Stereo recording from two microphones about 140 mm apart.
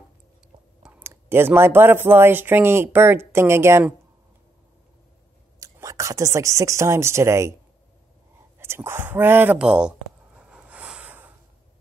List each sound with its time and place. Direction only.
0.8 s speech: 15° right (ahead or behind)
5.6 s speech: 25° right (ahead or behind)
8.5 s a sound: 15° right (ahead or behind)